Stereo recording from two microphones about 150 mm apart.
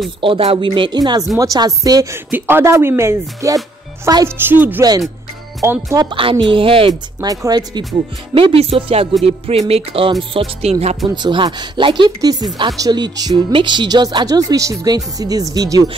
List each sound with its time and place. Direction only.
0.2 s speech: 40° right (ahead or behind); by 6.0 s 20° right (ahead or behind)
6.0 s speech: 35° right (ahead or behind)
7.2 s speech: 25° right (ahead or behind)
8.4 s speech: 40° right (ahead or behind); by 15.9 s 25° right (ahead or behind)